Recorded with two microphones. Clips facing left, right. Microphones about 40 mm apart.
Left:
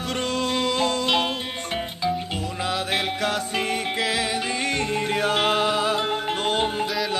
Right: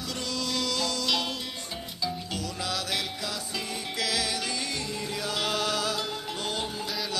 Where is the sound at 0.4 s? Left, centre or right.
Left.